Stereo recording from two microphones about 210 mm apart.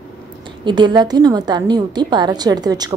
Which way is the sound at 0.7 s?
20° right (ahead or behind).